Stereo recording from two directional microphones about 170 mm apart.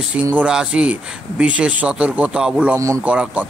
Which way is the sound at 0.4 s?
5° right (ahead or behind).